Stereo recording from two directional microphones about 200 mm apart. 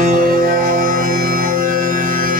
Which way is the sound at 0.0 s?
45° right (ahead or behind).